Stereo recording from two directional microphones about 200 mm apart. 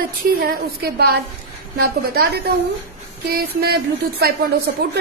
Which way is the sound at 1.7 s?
50° right (ahead or behind).